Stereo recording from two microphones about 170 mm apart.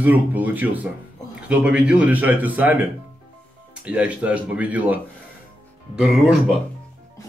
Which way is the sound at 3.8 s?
10° right (ahead or behind).